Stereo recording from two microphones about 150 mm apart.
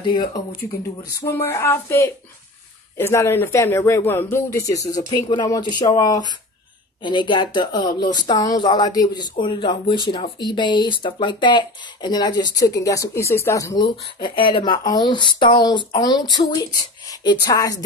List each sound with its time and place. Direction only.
0.0 s speech: 30° left (ahead or behind)
1.2 s speech: 15° left (ahead or behind)
14.3 s speech: 30° left (ahead or behind)